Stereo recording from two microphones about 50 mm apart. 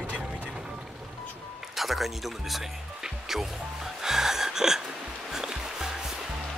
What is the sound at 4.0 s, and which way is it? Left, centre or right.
Gasp, centre.